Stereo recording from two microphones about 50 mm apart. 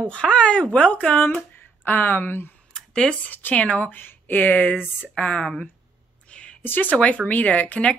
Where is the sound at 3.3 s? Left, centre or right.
Left.